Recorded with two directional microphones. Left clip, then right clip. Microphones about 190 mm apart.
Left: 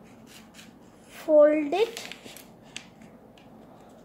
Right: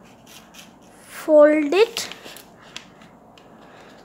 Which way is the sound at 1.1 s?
25° right (ahead or behind).